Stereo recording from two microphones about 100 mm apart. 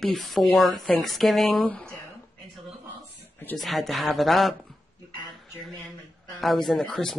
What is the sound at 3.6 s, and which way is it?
Speech, centre (ahead or behind).